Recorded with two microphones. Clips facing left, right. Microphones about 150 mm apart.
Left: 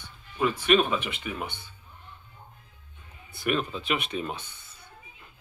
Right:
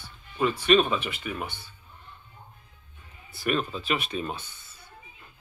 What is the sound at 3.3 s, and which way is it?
Speech, 20° left (ahead or behind).